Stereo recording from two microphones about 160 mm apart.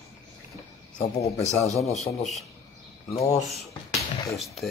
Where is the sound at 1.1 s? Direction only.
40° left (ahead or behind).